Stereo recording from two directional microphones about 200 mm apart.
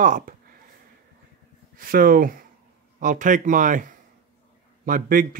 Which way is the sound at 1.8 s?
45° right (ahead or behind).